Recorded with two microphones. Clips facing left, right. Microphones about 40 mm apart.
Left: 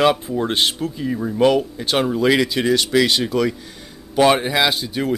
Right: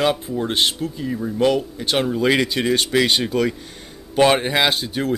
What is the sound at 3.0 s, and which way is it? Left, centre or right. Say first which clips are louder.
Speech: left 1 dB; centre.